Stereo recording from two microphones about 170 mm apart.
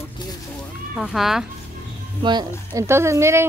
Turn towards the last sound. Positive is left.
turn(degrees=-15)  # may be behind; listen again after turning